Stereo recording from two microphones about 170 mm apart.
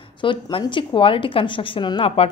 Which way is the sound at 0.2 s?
30° left (ahead or behind).